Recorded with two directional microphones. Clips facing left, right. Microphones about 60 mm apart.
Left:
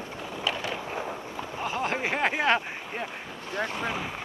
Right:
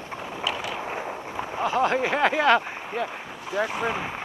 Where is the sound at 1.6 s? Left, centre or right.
Right.